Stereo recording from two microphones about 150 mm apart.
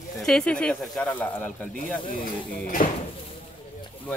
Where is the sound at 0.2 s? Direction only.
5° left (ahead or behind).